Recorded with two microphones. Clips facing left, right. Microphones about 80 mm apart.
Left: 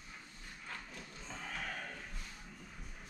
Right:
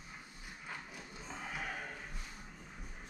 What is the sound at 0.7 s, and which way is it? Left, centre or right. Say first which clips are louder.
Horse: right 1 dB; centre.